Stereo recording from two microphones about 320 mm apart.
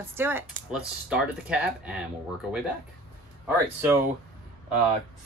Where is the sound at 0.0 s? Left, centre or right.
Centre.